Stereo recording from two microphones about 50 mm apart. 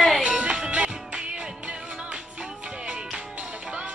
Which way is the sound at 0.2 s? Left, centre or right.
Right.